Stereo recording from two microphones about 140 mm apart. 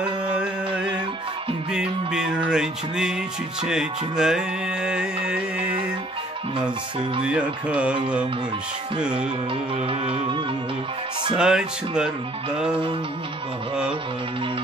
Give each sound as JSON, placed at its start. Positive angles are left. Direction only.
{"t": 1.7, "sound": "music", "side_deg": -5}
{"t": 7.2, "sound": "music", "side_deg": -10}
{"t": 9.8, "sound": "music", "side_deg": -40}
{"t": 11.3, "sound": "speech", "side_deg": -5}
{"t": 12.5, "sound": "music", "side_deg": -5}